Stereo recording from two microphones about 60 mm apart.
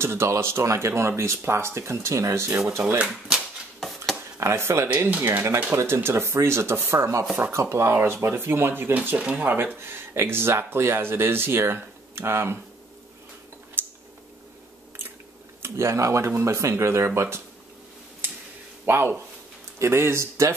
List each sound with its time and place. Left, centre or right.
0.0 s speech: right
2.6 s speech: centre
3.8 s a sound: centre
4.4 s speech: right
7.9 s speech: right
8.9 s speech: right
9.8 s speech: right
13.8 s a sound: right
15.6 s speech: right
18.9 s speech: right